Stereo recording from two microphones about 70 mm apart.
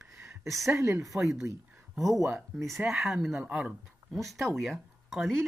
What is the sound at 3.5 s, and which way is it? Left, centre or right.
Speech, centre.